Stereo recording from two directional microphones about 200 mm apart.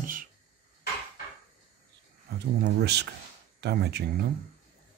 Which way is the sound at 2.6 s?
55° right (ahead or behind).